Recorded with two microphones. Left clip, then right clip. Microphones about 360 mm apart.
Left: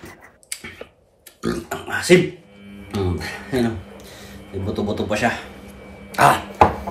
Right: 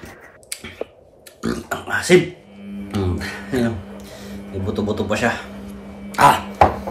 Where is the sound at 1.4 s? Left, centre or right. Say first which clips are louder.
Right 1 dB; centre.